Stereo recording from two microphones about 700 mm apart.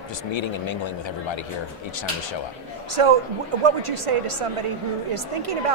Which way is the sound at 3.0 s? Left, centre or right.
Right.